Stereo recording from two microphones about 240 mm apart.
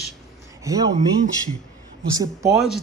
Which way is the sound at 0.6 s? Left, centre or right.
Centre.